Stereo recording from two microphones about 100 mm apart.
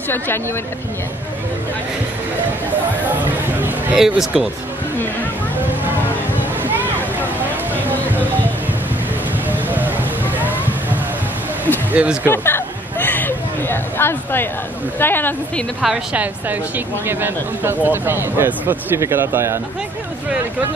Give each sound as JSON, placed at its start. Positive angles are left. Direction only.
{"t": 3.9, "sound": "speech", "side_deg": -5}
{"t": 6.6, "sound": "a sound", "side_deg": -20}
{"t": 9.5, "sound": "music", "side_deg": -20}
{"t": 11.9, "sound": "speech", "side_deg": -15}
{"t": 12.3, "sound": "a sound", "side_deg": 25}
{"t": 15.0, "sound": "speech", "side_deg": 20}
{"t": 15.8, "sound": "speech", "side_deg": -5}
{"t": 16.2, "sound": "a woman's voice", "side_deg": -20}